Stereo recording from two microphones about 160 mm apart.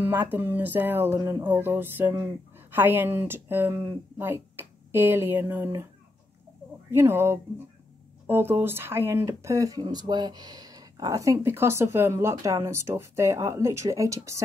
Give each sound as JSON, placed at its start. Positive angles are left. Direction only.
{"t": 0.0, "sound": "speech", "side_deg": -10}
{"t": 6.9, "sound": "speech", "side_deg": -15}